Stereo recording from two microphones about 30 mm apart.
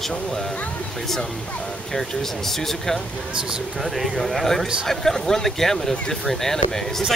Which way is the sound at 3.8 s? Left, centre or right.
Centre.